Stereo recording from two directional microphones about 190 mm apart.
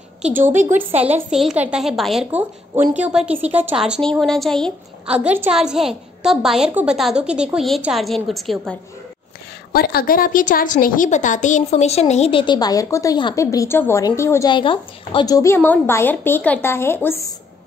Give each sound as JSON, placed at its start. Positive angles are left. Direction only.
{"t": 0.4, "sound": "a woman's voice", "side_deg": -40}
{"t": 1.1, "sound": "a woman's voice", "side_deg": -5}
{"t": 9.7, "sound": "a woman's voice", "side_deg": 55}